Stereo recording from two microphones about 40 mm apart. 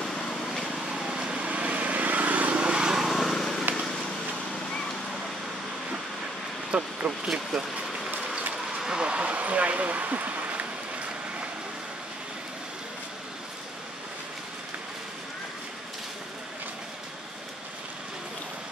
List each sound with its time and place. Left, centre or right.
0.0 s vehicle: centre
0.5 s vehicle: centre
0.8 s light engine: centre
1.5 s vehicle: right
2.6 s vehicle: centre
3.1 s vehicle: centre
6.7 s speech: right
7.1 s speech: centre
8.8 s speech: right
9.2 s speech: right